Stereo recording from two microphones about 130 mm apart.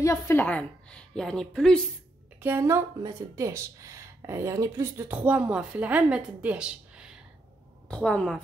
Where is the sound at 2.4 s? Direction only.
20° right (ahead or behind).